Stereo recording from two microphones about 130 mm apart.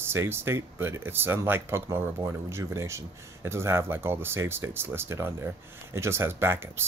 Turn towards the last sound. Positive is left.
turn(degrees=-15)  # may be behind; listen again after turning